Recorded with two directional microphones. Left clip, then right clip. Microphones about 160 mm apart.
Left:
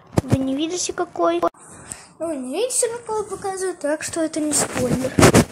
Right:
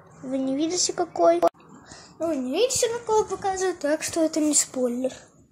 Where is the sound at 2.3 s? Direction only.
Centre (ahead or behind).